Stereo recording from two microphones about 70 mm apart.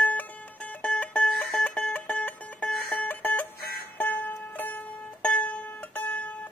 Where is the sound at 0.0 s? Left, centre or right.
Left.